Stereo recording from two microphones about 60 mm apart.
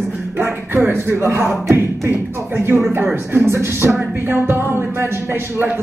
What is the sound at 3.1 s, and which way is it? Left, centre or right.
Speech, right.